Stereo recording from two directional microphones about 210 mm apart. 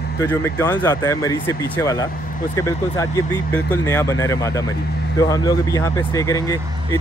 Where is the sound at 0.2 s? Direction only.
10° left (ahead or behind).